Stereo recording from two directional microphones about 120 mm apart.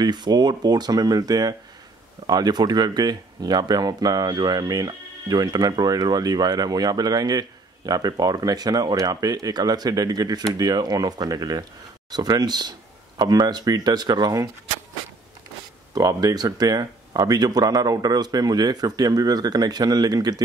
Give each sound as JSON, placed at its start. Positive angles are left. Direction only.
{"t": 0.0, "sound": "speech", "side_deg": -35}
{"t": 15.9, "sound": "speech", "side_deg": -30}